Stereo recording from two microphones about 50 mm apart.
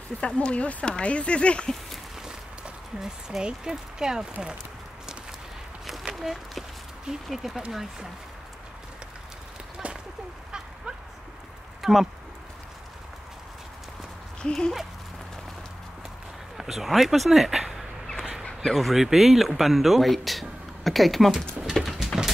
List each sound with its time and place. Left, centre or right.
0.4 s speech: left
2.2 s speech: centre
5.9 s a sound: centre
7.2 s speech: centre
11.8 s speech: centre
14.4 s speech: centre
16.5 s speech: centre
21.9 s a sound: centre